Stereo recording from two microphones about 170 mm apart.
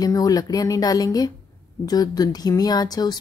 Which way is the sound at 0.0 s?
20° left (ahead or behind).